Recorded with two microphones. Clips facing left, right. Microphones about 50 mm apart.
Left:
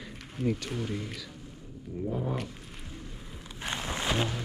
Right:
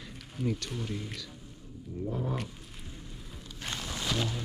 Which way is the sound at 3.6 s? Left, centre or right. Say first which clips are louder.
Left 4 dB; left.